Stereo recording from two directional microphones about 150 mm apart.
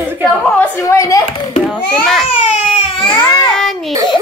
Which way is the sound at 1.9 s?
Centre (ahead or behind).